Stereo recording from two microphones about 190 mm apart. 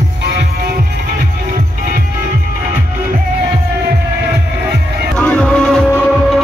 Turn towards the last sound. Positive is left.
turn(degrees=5)  # may be behind; listen again after turning